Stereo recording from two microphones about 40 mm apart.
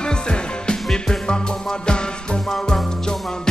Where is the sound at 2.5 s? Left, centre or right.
Centre.